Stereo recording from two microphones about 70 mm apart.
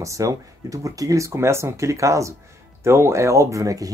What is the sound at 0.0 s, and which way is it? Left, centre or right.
Speech, right.